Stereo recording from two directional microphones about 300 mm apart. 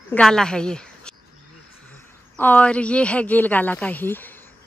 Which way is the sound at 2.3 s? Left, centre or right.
Centre.